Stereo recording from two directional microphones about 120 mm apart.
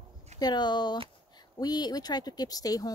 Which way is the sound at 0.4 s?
35° left (ahead or behind).